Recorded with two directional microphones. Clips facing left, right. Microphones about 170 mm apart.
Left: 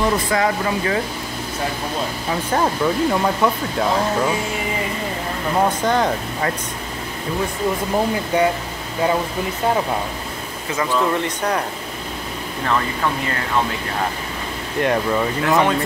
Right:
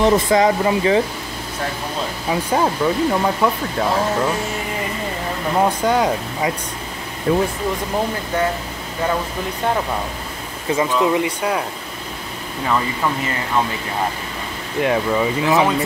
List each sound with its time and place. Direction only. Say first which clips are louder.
0.0 s speech: right 4 dB; 20° right (ahead or behind)
2.5 s speech: even; 5° right (ahead or behind)
5.6 s speech: right 1 dB; 10° right (ahead or behind)
7.3 s speech: right 7 dB; 85° right
8.3 s speech: left 3 dB; 15° left (ahead or behind)
10.8 s speech: right 2 dB; 10° right (ahead or behind)
14.8 s speech: right 1 dB; centre (ahead or behind)